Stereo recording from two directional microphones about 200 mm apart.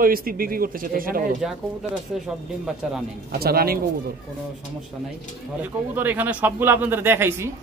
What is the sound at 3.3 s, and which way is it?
Speech, 50° right (ahead or behind).